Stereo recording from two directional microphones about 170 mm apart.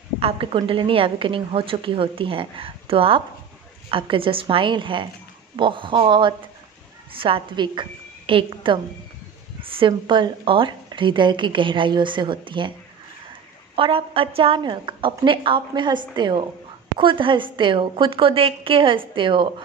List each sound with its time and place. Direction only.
0.2 s a woman's voice: 35° right (ahead or behind)
13.7 s a woman's voice: 30° right (ahead or behind)